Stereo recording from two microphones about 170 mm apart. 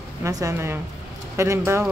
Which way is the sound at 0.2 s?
20° right (ahead or behind).